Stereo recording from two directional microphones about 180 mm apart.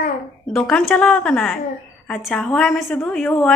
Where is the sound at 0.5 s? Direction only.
5° left (ahead or behind).